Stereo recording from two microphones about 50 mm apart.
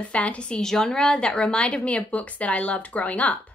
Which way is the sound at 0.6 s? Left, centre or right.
Centre.